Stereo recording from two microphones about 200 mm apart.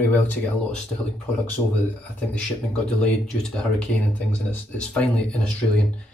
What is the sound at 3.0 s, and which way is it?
Speech, 5° left (ahead or behind).